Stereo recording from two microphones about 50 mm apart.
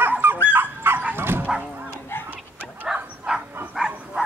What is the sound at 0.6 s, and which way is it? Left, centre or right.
Dog, right.